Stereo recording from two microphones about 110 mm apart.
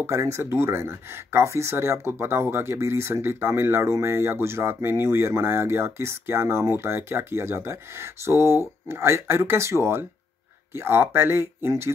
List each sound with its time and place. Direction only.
0.0 s speech: 25° right (ahead or behind)